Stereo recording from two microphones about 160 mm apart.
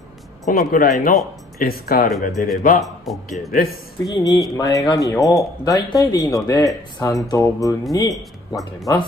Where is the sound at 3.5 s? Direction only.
70° left (ahead or behind).